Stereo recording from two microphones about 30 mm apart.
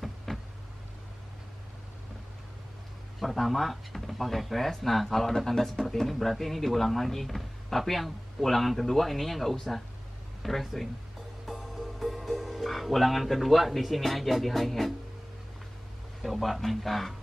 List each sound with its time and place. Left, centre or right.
0.3 s vehicle: centre
3.2 s speech: centre
11.4 s music: centre
12.6 s speech: centre
16.2 s speech: centre